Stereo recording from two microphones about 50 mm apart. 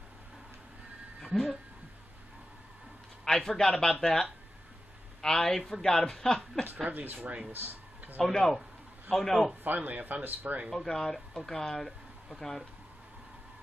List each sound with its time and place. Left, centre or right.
1.2 s a sound: centre
3.3 s speech: centre
6.9 s speech: right
7.5 s a sound: right
8.2 s speech: centre
9.6 s speech: right
10.7 s speech: centre